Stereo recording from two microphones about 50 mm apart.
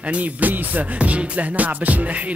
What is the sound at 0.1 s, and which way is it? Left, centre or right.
Music, right.